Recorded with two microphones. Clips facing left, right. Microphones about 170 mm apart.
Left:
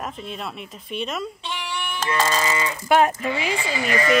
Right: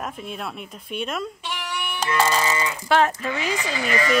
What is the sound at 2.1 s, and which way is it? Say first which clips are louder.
Music: right 1 dB; 15° right (ahead or behind).